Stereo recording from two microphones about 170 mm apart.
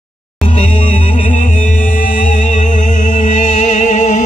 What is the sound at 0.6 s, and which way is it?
Music, 45° left (ahead or behind).